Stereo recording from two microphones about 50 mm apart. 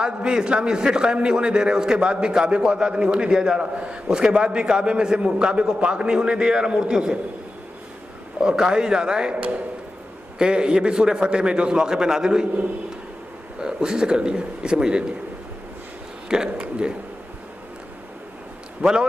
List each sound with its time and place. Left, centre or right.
0.0 s a man's voice: centre
8.4 s a man's voice: centre
10.4 s a man's voice: centre
13.6 s a man's voice: centre
16.3 s speech: centre
18.8 s a man's voice: centre